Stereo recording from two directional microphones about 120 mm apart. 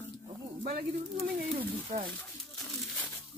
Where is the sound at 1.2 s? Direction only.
5° right (ahead or behind).